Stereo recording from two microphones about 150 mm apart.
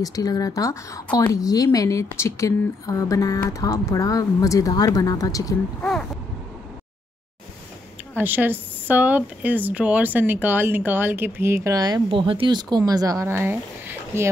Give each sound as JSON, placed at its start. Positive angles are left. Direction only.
{"t": 0.0, "sound": "speech", "side_deg": 25}
{"t": 5.8, "sound": "speech", "side_deg": 5}
{"t": 8.2, "sound": "speech", "side_deg": -15}